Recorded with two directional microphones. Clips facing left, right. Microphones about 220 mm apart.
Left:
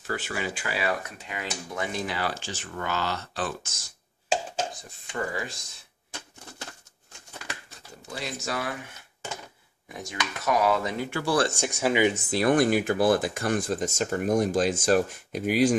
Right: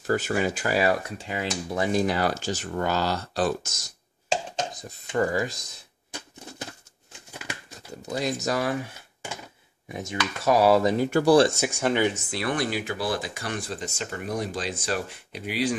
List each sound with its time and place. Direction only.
0.0 s speech: 45° right (ahead or behind)
6.6 s crumpling: 20° right (ahead or behind)
8.2 s speech: 40° right (ahead or behind)
9.8 s speech: 25° right (ahead or behind); by 11.3 s 40° right (ahead or behind)
11.4 s speech: 5° right (ahead or behind)
12.3 s speech: 40° left (ahead or behind)